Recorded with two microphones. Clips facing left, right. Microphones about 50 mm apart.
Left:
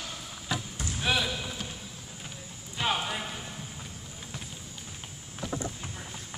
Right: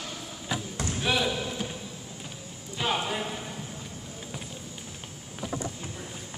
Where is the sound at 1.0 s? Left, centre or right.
Centre.